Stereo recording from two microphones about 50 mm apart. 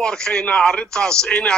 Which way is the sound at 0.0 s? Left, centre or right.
Centre.